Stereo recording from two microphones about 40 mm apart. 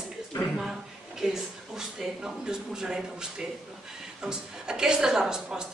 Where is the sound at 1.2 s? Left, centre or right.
Centre.